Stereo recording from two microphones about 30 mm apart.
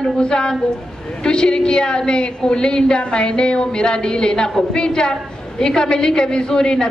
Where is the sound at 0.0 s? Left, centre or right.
Left.